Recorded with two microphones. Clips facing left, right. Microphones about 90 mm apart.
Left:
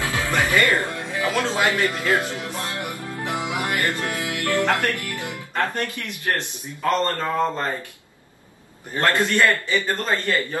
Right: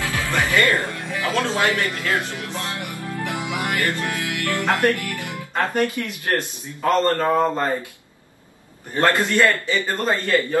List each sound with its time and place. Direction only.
0.0 s music: 20° left (ahead or behind)
5.0 s speech: 20° left (ahead or behind)
5.3 s a man's voice: 20° right (ahead or behind)
9.0 s a man's voice: 20° right (ahead or behind)